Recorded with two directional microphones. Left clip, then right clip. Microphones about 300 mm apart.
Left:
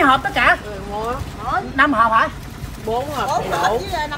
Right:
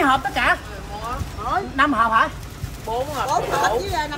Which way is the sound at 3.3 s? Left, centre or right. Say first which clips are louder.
Left 1 dB; right.